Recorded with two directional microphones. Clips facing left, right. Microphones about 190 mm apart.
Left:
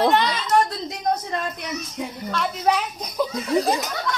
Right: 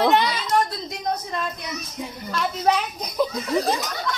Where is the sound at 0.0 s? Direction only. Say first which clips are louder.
Even; 10° right (ahead or behind).